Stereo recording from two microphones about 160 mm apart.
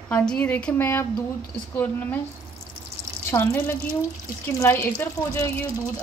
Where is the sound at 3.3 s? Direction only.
15° left (ahead or behind).